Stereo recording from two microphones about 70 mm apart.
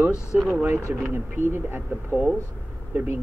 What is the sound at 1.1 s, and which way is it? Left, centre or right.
Speech, right.